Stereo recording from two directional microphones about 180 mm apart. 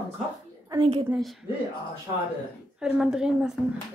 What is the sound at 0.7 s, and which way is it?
Speech, 30° right (ahead or behind).